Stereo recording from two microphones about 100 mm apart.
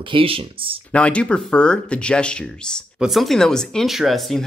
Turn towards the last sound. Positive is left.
turn(degrees=0)  # may be behind; listen again after turning